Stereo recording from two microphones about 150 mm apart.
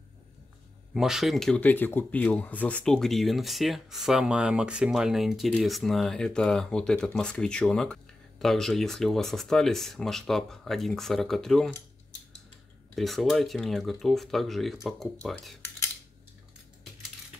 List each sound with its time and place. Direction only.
0.9 s speech: centre (ahead or behind)
12.9 s speech: centre (ahead or behind)